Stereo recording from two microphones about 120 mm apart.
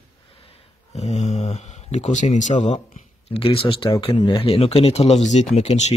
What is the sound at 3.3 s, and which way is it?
Speech, 50° left (ahead or behind).